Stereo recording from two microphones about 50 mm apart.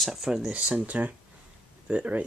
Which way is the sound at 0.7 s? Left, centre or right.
Right.